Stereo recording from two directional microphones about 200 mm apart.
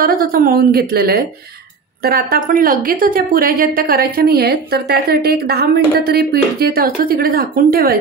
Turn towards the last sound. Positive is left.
turn(degrees=-50)  # may be behind; listen again after turning